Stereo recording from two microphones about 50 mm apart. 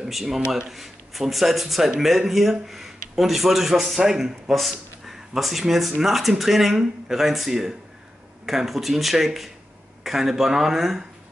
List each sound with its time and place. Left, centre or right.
0.0 s a man's voice: centre